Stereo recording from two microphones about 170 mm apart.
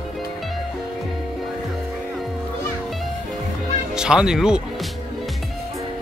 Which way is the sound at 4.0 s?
5° right (ahead or behind).